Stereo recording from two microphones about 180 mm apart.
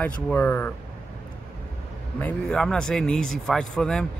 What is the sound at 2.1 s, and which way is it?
Speech, 5° left (ahead or behind).